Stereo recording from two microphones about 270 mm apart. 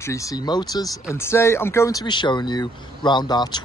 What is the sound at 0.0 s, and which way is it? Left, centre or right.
Speech, centre.